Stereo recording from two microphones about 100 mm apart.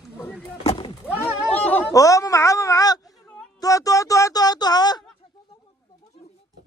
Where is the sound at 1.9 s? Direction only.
35° left (ahead or behind).